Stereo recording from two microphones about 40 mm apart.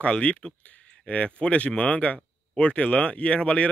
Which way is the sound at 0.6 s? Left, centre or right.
Left.